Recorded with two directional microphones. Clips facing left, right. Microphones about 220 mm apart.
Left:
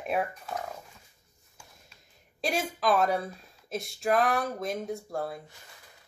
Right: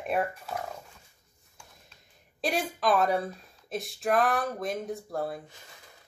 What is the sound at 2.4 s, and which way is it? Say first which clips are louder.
Speech: even; centre (ahead or behind).